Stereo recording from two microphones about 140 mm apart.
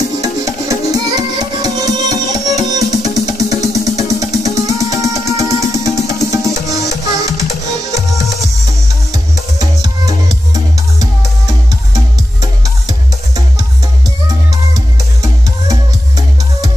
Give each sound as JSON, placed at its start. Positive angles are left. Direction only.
{"t": 0.2, "sound": "music", "side_deg": -25}
{"t": 9.1, "sound": "music", "side_deg": -25}